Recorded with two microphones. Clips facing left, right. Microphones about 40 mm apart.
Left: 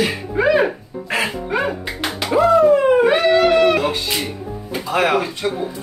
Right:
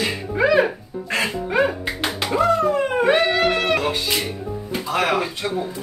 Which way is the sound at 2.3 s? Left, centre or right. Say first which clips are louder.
Left 6 dB; centre.